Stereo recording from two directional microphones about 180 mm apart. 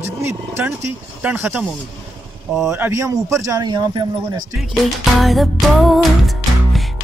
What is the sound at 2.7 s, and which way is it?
Speech, 15° right (ahead or behind).